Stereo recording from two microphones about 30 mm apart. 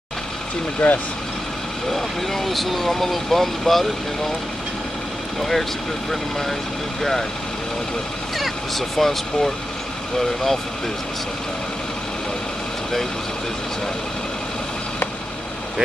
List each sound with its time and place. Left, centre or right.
0.7 s speech: left
1.9 s speech: centre
5.4 s speech: centre
7.0 s speech: centre
8.4 s speech: centre